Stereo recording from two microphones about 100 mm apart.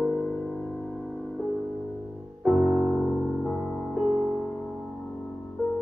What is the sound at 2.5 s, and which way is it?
Music, centre (ahead or behind).